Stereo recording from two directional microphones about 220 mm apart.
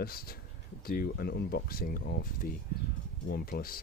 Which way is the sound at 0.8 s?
45° left (ahead or behind).